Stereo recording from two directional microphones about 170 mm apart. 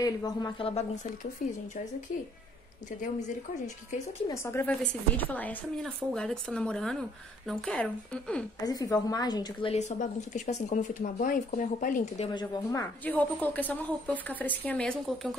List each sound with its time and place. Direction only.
0.0 s a woman's voice: 20° left (ahead or behind)
1.4 s speech: 50° left (ahead or behind)
3.0 s speech: 45° left (ahead or behind)
4.3 s a woman's voice: 15° left (ahead or behind)
8.6 s a woman's voice: 20° left (ahead or behind)
9.8 s speech: 45° left (ahead or behind)
12.3 s a woman's voice: 25° left (ahead or behind)
13.0 s a woman's voice: 10° left (ahead or behind)